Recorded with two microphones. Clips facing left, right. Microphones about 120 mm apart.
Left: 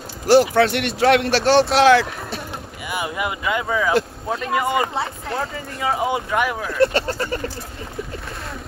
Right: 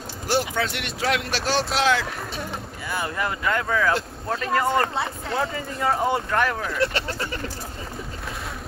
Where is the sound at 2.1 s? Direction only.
5° left (ahead or behind).